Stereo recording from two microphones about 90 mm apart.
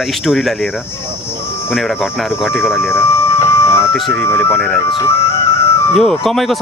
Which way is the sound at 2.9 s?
30° left (ahead or behind).